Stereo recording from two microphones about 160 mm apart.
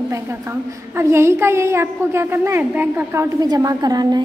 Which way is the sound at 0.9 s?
15° right (ahead or behind).